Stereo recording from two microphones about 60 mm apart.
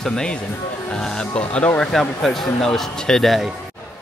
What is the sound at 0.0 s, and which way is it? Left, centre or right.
Speech, centre.